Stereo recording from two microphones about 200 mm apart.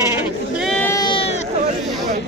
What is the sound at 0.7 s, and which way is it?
Sheep, 10° left (ahead or behind).